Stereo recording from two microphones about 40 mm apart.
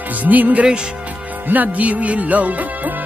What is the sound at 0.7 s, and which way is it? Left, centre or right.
Speech, right.